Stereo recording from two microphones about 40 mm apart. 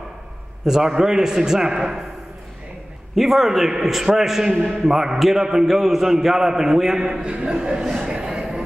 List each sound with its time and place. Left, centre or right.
0.7 s a man's voice: centre
3.2 s a man's voice: centre
7.2 s speech: right
7.8 s a man's voice: centre
8.2 s train: centre